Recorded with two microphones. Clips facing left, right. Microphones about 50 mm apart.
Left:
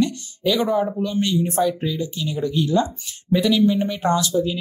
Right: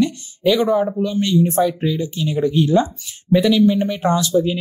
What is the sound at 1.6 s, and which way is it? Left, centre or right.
Speech, right.